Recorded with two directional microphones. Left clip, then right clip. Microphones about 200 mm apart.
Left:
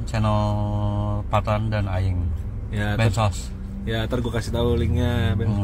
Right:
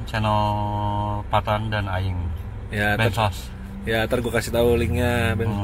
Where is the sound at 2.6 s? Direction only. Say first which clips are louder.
Right 7 dB; 10° right (ahead or behind).